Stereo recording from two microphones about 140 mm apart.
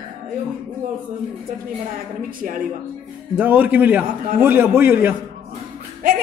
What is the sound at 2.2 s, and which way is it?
Speech, 75° right (ahead or behind).